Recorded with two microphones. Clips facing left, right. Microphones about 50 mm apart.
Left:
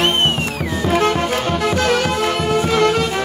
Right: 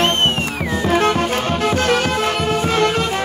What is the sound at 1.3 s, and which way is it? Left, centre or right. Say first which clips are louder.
Music: even; right.